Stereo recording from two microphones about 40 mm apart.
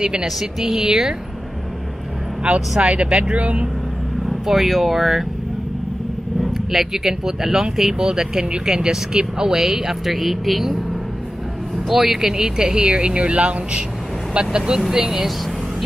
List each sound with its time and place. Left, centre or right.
0.0 s speech: right
0.4 s speech: centre
2.8 s speech: right
4.5 s speech: centre
6.4 s speech: centre
11.9 s speech: centre